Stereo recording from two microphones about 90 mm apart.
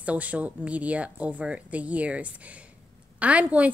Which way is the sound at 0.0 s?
15° right (ahead or behind).